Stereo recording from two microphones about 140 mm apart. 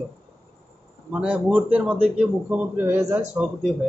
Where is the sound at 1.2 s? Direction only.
10° right (ahead or behind).